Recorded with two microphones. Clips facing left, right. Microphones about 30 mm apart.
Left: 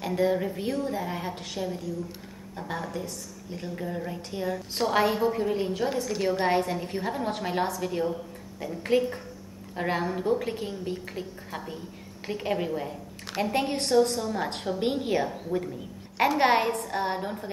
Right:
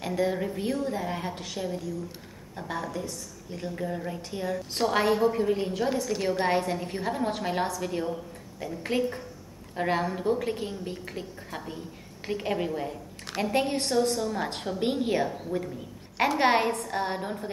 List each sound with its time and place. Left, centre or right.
0.1 s a woman's voice: centre
1.3 s a woman's voice: centre
1.6 s a woman's voice: centre